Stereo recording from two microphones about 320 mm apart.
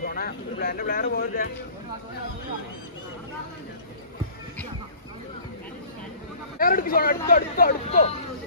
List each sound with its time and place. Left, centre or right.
0.0 s speech: left
6.6 s speech: left